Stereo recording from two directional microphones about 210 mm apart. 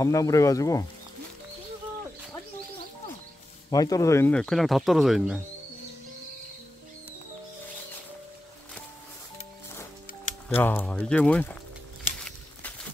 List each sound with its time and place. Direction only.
0.0 s speech: 15° left (ahead or behind)
3.7 s speech: 15° left (ahead or behind); by 5.4 s centre (ahead or behind)
10.5 s speech: 10° left (ahead or behind)
12.2 s a sound: 5° left (ahead or behind)